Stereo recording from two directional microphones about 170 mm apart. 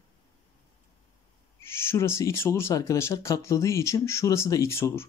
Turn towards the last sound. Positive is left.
turn(degrees=15)  # may be behind; listen again after turning